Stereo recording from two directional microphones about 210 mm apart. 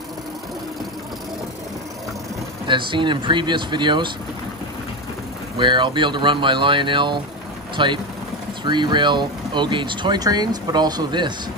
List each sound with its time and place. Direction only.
2.6 s speech: 25° right (ahead or behind)
5.6 s speech: 20° right (ahead or behind)